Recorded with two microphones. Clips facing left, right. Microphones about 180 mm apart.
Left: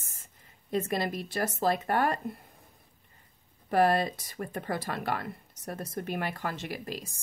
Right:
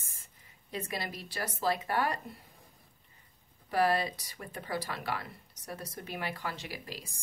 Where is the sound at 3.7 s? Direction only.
50° left (ahead or behind).